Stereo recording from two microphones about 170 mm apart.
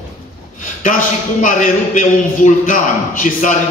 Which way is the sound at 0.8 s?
50° left (ahead or behind).